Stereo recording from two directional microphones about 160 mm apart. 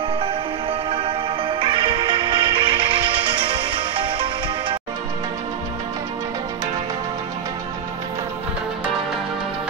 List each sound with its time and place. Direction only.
0.2 s music: 35° right (ahead or behind)